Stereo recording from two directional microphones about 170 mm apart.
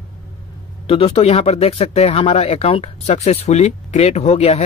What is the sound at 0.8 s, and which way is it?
Speech, 35° left (ahead or behind).